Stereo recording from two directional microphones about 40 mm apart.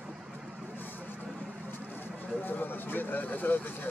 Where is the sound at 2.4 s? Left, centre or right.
Left.